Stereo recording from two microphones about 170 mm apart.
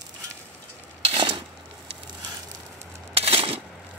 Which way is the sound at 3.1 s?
35° right (ahead or behind).